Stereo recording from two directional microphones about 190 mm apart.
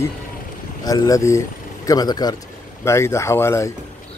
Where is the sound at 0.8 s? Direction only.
20° left (ahead or behind).